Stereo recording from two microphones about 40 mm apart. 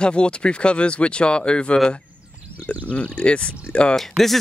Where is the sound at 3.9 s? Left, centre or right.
Centre.